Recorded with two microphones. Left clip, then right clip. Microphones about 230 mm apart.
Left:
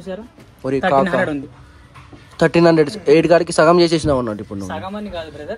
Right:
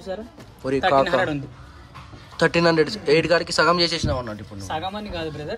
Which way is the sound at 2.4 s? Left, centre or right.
Centre.